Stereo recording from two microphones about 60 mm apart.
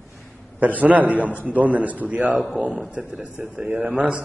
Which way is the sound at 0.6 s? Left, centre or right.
Right.